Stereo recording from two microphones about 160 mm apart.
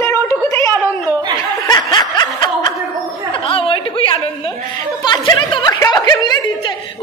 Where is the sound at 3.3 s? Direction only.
35° left (ahead or behind).